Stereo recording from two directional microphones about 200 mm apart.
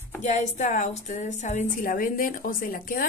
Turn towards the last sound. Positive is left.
turn(degrees=45)  # may be behind; listen again after turning